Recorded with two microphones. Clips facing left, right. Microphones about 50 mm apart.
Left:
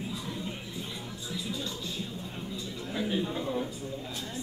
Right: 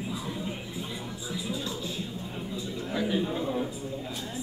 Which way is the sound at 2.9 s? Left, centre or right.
Centre.